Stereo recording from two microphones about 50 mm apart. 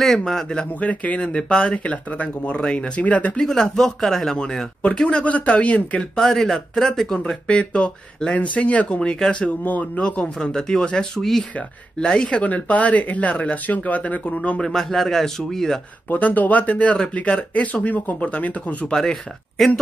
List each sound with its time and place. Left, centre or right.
0.0 s speech: centre
0.7 s speech: left
1.2 s speech: centre
1.8 s speech: left
3.3 s speech: centre
5.0 s speech: left
6.1 s speech: centre
9.7 s speech: left
10.4 s speech: centre
12.4 s speech: left
14.7 s speech: centre
16.1 s speech: left
18.9 s speech: centre